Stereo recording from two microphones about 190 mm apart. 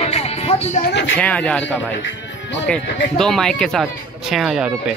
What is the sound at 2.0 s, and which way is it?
Music, 70° left (ahead or behind).